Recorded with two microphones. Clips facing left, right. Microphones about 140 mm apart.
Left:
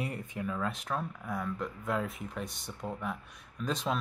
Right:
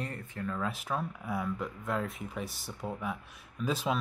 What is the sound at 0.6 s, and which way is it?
Speech, 5° right (ahead or behind).